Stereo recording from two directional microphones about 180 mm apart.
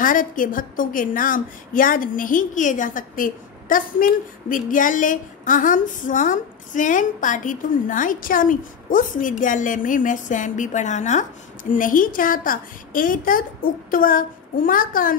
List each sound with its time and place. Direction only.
0.0 s a woman's voice: 50° left (ahead or behind)